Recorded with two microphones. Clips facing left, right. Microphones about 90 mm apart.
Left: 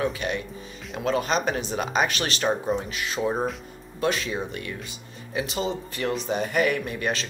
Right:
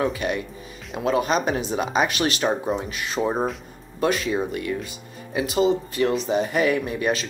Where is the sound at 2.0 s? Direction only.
35° left (ahead or behind).